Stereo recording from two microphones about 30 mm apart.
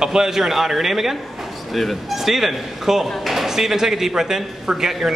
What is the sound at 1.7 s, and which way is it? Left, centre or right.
Speech, centre.